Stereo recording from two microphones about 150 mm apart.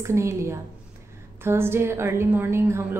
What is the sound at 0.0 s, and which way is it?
A woman's voice, 20° right (ahead or behind).